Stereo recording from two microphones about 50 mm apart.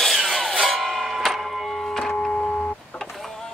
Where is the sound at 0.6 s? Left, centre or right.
Centre.